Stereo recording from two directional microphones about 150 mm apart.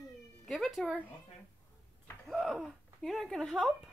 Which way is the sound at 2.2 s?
Centre (ahead or behind).